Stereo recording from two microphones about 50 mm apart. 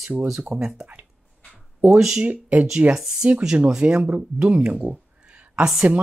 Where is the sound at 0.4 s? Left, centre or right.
Centre.